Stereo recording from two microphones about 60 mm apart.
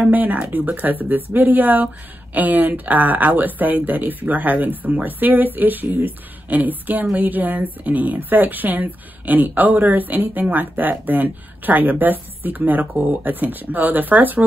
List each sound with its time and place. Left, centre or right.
0.0 s speech: right